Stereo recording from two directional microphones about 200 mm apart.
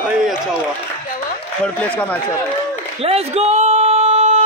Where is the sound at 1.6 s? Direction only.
5° left (ahead or behind).